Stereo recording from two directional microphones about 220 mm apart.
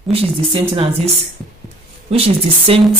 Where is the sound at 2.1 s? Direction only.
25° right (ahead or behind).